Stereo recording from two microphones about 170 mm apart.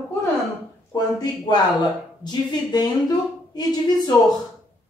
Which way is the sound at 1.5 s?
25° left (ahead or behind).